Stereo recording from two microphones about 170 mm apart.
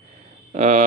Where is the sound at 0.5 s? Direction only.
45° right (ahead or behind).